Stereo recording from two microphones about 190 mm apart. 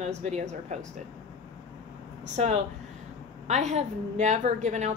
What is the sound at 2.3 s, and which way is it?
Speech, 35° right (ahead or behind).